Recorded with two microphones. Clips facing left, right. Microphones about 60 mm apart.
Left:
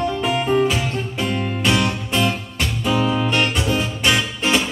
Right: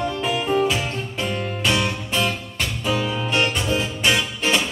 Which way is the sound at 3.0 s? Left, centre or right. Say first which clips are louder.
Left 5 dB; left.